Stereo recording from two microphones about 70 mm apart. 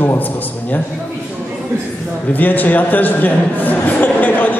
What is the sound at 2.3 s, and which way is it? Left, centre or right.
A man's voice, left.